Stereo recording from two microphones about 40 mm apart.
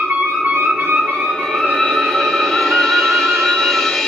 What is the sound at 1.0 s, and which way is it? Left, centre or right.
Music, centre.